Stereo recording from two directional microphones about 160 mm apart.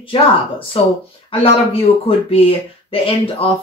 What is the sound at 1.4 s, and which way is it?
Speech, 35° left (ahead or behind).